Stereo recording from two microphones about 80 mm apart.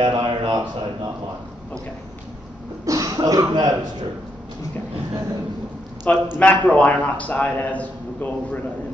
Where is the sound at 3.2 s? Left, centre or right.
Right.